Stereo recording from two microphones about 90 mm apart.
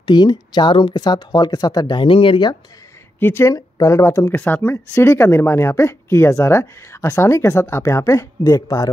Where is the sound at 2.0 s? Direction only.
80° left.